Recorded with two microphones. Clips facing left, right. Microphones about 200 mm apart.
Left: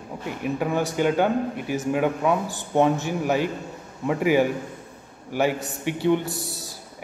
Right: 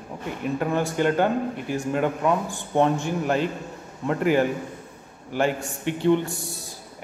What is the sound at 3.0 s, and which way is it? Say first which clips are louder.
Speech: even; 5° left (ahead or behind).